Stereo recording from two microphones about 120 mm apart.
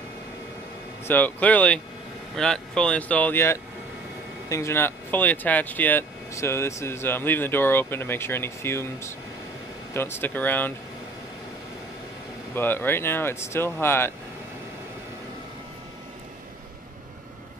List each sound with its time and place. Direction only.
1.0 s speech: 15° left (ahead or behind)
12.5 s speech: 20° left (ahead or behind)